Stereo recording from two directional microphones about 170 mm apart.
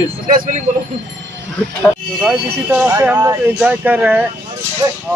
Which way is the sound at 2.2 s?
5° right (ahead or behind).